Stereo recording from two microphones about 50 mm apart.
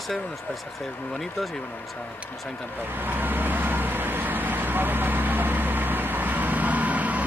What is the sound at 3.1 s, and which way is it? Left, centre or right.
Vehicle, right.